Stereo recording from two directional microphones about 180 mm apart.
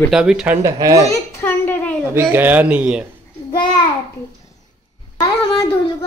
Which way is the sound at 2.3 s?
10° right (ahead or behind).